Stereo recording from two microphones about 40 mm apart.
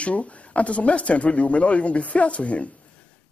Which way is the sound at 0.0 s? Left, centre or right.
Left.